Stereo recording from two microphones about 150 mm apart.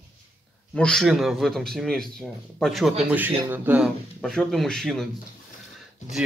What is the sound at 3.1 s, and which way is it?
Speech, 10° right (ahead or behind).